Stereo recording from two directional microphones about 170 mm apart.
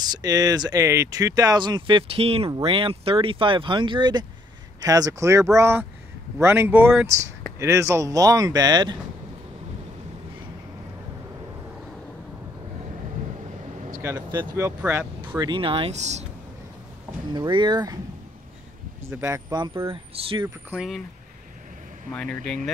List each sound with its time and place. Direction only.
0.0 s speech: 25° right (ahead or behind)
14.0 s speech: 20° right (ahead or behind)
15.2 s speech: 25° right (ahead or behind); by 16.3 s 40° right (ahead or behind)
17.3 s speech: 25° right (ahead or behind)
19.0 s speech: 15° right (ahead or behind)
19.9 s speech: 30° right (ahead or behind)
20.7 s speech: 5° right (ahead or behind)
22.1 s speech: 5° left (ahead or behind)